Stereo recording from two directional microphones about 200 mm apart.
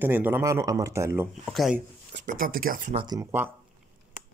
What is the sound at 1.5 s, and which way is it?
Speech, centre (ahead or behind).